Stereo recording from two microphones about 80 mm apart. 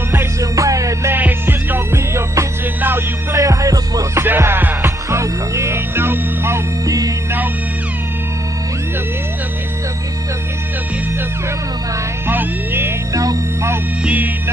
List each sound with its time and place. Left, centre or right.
0.1 s music: right
1.1 s music: right
3.3 s music: right
4.1 s music: right
12.3 s music: right
13.1 s music: right
14.0 s music: right